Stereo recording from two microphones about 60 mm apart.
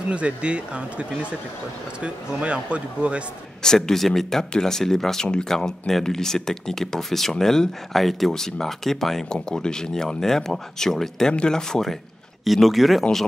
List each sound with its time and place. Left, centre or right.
0.1 s speech: centre
3.6 s speech: centre